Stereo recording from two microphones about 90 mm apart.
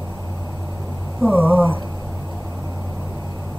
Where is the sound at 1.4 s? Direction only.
20° right (ahead or behind).